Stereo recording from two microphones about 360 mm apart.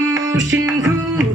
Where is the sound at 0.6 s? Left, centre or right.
Centre.